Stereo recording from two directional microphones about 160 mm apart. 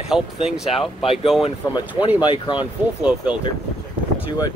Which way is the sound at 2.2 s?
30° left (ahead or behind).